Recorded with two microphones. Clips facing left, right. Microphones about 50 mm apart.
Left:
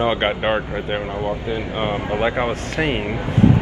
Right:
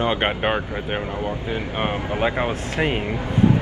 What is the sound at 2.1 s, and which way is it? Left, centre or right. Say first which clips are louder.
Speech: left 2 dB; centre.